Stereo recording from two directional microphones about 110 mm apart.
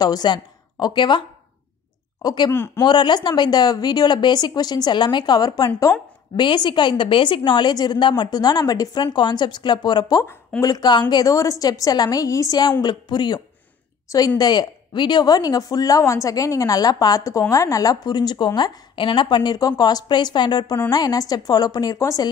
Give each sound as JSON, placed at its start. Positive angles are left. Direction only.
{"t": 0.0, "sound": "a woman's voice", "side_deg": 40}
{"t": 2.2, "sound": "speech", "side_deg": 40}
{"t": 2.5, "sound": "speech", "side_deg": 20}
{"t": 2.8, "sound": "speech", "side_deg": 40}
{"t": 6.4, "sound": "a woman's voice", "side_deg": 45}